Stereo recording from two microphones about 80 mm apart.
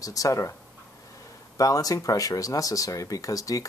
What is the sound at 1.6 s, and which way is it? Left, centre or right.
Speech, left.